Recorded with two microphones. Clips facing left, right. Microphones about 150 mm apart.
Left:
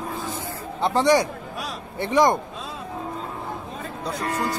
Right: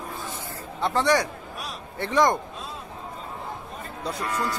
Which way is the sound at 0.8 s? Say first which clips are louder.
Left 3 dB; 15° left (ahead or behind).